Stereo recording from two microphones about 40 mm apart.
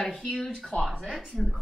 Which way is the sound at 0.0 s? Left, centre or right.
Left.